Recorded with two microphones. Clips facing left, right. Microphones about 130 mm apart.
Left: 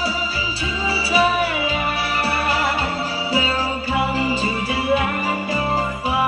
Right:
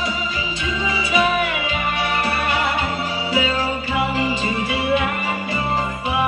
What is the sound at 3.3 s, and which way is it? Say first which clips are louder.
Music: right 1 dB; 35° left (ahead or behind).